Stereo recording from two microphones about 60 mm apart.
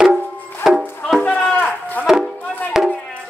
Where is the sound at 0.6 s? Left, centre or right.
Centre.